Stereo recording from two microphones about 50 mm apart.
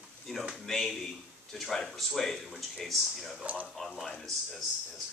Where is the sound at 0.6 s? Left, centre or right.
Centre.